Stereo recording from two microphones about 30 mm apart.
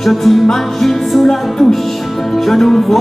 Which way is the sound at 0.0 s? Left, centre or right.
Centre.